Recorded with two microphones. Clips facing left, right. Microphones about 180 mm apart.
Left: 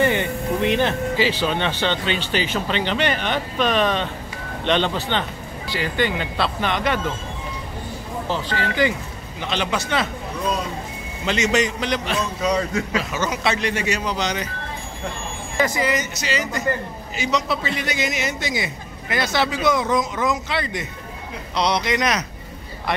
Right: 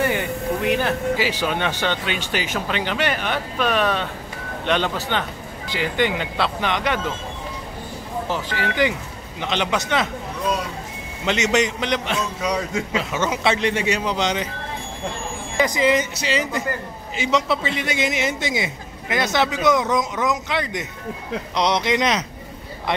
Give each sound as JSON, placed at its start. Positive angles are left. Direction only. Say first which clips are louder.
{"t": 0.0, "sound": "speech", "louder": "left 2 dB", "side_deg": -5}
{"t": 8.3, "sound": "a man's voice", "louder": "left 2 dB", "side_deg": -15}
{"t": 11.2, "sound": "a man's voice", "louder": "even", "side_deg": -20}
{"t": 12.2, "sound": "speech", "louder": "left 2 dB", "side_deg": -5}
{"t": 12.7, "sound": "a man's voice", "louder": "even", "side_deg": -25}
{"t": 15.5, "sound": "speech", "louder": "right 3 dB", "side_deg": -15}
{"t": 17.2, "sound": "a man's voice", "louder": "right 2 dB", "side_deg": -25}